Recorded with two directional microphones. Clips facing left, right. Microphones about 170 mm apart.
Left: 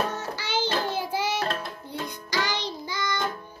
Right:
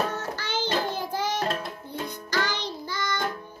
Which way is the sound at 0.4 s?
10° left (ahead or behind).